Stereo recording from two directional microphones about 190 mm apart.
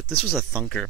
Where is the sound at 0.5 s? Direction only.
5° left (ahead or behind).